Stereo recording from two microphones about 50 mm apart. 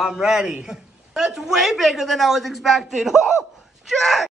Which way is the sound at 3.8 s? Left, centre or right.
Centre.